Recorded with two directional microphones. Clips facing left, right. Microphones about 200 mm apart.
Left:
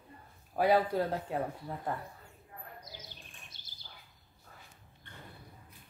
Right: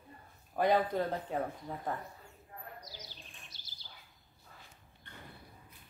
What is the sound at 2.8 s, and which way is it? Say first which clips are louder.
Bird: even; 55° left (ahead or behind).